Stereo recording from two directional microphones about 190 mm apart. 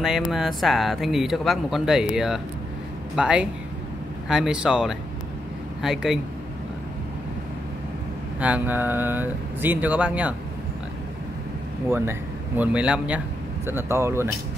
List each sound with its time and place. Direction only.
0.3 s speech: centre (ahead or behind)
8.4 s speech: 5° right (ahead or behind)
11.9 s speech: 10° right (ahead or behind)